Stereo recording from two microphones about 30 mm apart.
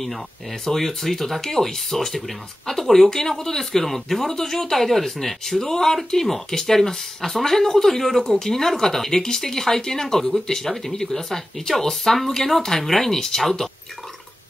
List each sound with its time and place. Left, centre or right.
0.7 s speech: centre